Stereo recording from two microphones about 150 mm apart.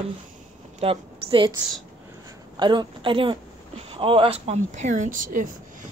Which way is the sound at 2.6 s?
30° right (ahead or behind).